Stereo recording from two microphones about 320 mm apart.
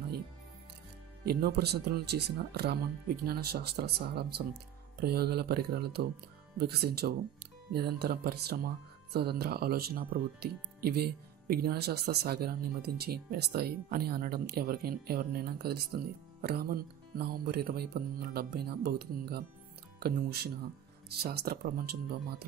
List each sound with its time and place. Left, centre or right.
1.2 s speech: right